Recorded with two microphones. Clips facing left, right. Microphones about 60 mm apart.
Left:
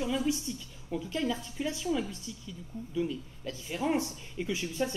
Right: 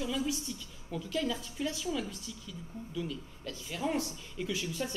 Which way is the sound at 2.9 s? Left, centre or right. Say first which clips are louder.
Left 6 dB; left.